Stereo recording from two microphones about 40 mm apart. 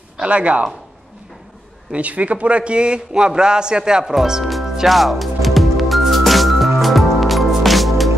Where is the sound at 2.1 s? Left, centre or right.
Right.